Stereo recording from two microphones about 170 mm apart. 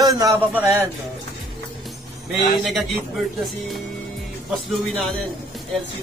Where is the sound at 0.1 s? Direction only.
20° right (ahead or behind).